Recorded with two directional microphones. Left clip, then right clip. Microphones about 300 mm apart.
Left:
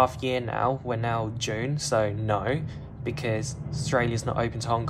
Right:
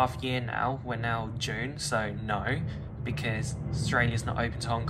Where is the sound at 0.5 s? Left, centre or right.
Left.